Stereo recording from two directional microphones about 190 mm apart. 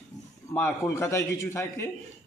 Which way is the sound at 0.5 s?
10° left (ahead or behind).